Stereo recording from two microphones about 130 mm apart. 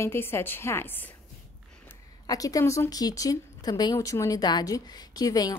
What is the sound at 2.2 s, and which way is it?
A woman's voice, 30° left (ahead or behind).